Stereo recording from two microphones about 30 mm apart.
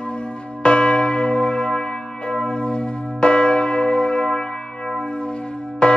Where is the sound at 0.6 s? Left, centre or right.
Left.